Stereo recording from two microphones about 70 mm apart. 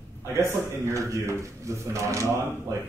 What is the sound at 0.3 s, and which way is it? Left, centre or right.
Speech, right.